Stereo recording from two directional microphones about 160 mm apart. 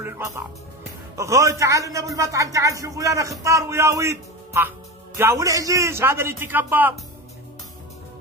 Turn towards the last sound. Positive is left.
turn(degrees=-10)  # may be behind; listen again after turning